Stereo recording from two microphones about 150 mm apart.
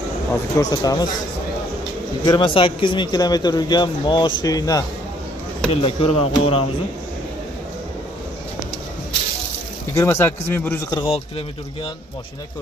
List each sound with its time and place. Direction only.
0.3 s a man's voice: 25° left (ahead or behind)
2.2 s a man's voice: 30° left (ahead or behind)
5.7 s speech: 40° left (ahead or behind)
9.9 s speech: 20° left (ahead or behind)
10.9 s speech: 35° left (ahead or behind)